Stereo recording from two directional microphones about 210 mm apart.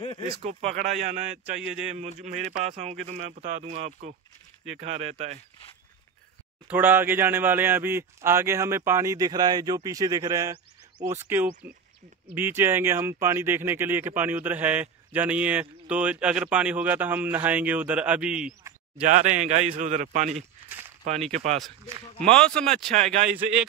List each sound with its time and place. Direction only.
0.0 s a sound: 20° left (ahead or behind)
0.4 s speech: 30° right (ahead or behind)
1.6 s speech: 5° right (ahead or behind)
2.0 s speech: 35° right (ahead or behind)
6.7 s speech: 10° right (ahead or behind)
19.0 s speech: 35° right (ahead or behind)
22.3 s speech: 5° left (ahead or behind)
22.8 s speech: 35° right (ahead or behind)
23.3 s speech: 5° right (ahead or behind)